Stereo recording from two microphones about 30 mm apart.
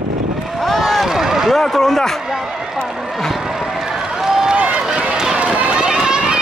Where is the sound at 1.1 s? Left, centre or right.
Centre.